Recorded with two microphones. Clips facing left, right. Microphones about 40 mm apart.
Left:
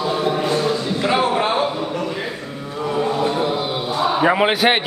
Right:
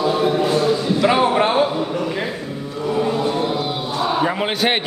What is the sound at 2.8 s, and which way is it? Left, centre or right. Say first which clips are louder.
Mantra: right 1 dB; centre.